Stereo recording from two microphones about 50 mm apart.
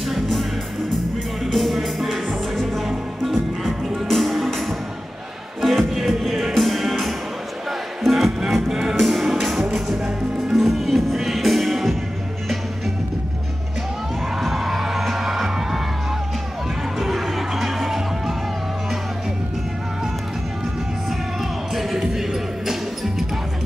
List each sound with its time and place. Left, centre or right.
0.0 s music: centre
1.5 s music: centre
9.9 s music: centre
10.5 s music: centre
14.3 s music: centre
17.0 s music: centre
21.4 s music: centre